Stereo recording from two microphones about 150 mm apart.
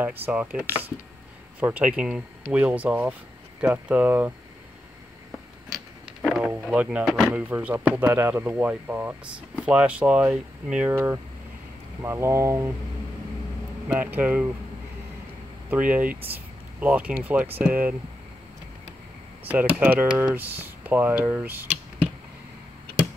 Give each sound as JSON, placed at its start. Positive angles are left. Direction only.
{"t": 0.0, "sound": "speech", "side_deg": -10}
{"t": 6.2, "sound": "speech", "side_deg": 0}
{"t": 12.0, "sound": "speech", "side_deg": -20}
{"t": 13.9, "sound": "speech", "side_deg": -10}
{"t": 15.7, "sound": "speech", "side_deg": -10}
{"t": 19.4, "sound": "speech", "side_deg": -10}